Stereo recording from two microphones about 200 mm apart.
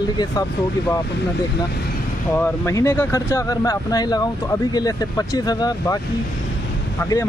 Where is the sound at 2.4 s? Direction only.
10° left (ahead or behind).